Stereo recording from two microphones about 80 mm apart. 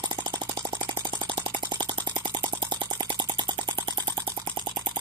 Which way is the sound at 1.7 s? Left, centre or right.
Right.